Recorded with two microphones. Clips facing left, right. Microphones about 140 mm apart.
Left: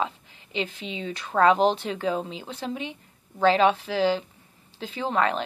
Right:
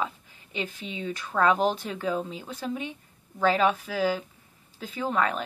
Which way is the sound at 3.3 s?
30° left (ahead or behind).